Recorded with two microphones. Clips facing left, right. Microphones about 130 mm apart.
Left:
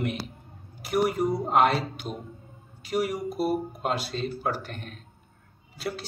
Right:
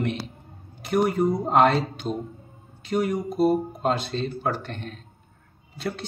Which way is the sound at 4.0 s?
5° left (ahead or behind).